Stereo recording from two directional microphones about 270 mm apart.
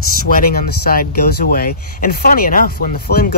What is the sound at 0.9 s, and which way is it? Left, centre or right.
Speech, left.